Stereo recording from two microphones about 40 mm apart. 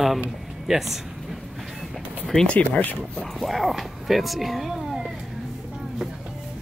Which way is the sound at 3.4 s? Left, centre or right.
Centre.